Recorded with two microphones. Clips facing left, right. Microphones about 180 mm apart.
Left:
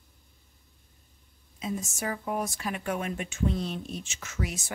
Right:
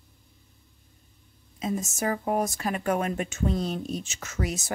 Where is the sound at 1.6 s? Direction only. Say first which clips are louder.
Right 4 dB; 40° right (ahead or behind).